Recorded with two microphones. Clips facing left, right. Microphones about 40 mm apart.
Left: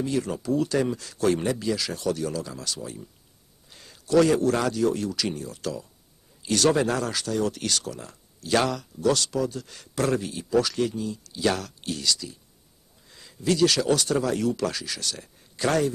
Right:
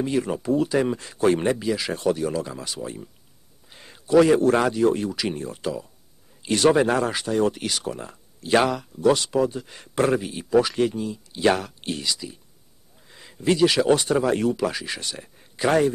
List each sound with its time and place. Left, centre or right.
0.0 s speech: right
3.6 s a sound: right
4.4 s speech: right